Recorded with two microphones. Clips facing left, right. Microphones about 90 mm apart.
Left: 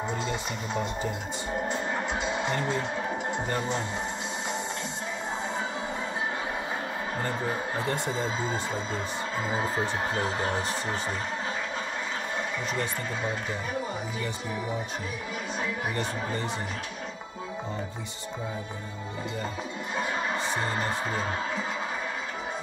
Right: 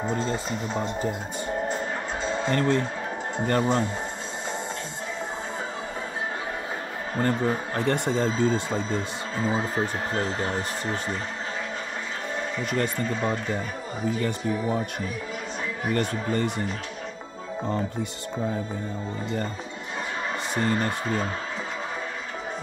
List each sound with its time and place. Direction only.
0.0 s speech: 15° left (ahead or behind)
2.2 s music: 15° left (ahead or behind)
3.4 s speech: 60° right (ahead or behind)
7.2 s speech: 60° right (ahead or behind)
12.7 s speech: 55° right (ahead or behind)
15.9 s speech: 60° right (ahead or behind)